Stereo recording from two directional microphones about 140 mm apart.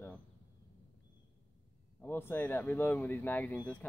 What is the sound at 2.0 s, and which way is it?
Speech, 15° left (ahead or behind).